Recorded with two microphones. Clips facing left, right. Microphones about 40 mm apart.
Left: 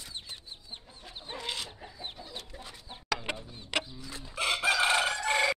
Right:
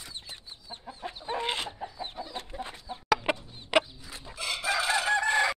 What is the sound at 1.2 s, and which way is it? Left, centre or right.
Chicken, right.